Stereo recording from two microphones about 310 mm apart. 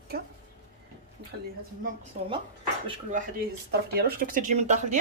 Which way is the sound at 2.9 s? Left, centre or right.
Right.